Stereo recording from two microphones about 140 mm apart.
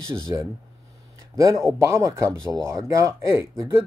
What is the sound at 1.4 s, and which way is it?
Speech, 20° right (ahead or behind).